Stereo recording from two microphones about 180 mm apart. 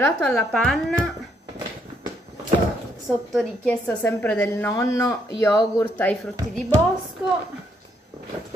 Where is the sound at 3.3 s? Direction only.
5° left (ahead or behind).